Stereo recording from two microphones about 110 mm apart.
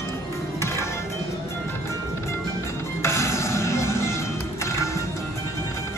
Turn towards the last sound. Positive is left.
turn(degrees=25)  # may be behind; listen again after turning